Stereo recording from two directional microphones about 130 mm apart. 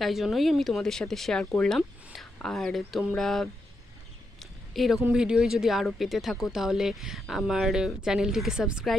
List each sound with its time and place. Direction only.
0.0 s speech: centre (ahead or behind)
4.7 s speech: centre (ahead or behind)